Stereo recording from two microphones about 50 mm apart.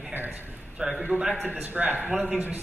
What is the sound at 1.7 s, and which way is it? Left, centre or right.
Speech, right.